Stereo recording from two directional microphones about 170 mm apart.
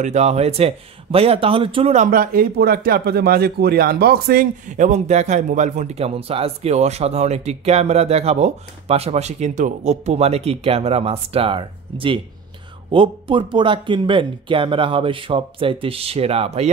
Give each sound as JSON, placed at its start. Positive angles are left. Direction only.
{"t": 0.0, "sound": "a man's voice", "side_deg": -40}
{"t": 2.0, "sound": "a man's voice", "side_deg": -60}